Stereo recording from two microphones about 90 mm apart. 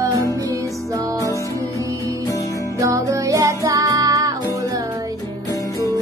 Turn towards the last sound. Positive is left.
turn(degrees=-40)  # may be behind; listen again after turning